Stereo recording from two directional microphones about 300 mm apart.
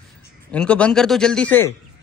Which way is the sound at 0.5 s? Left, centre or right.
Centre.